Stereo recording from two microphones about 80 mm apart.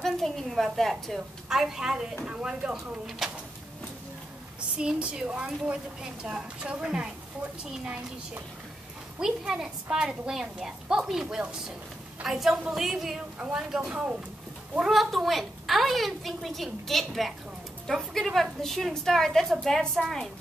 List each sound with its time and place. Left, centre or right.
0.0 s a woman's voice: centre
4.7 s a woman's voice: centre
9.2 s a woman's voice: centre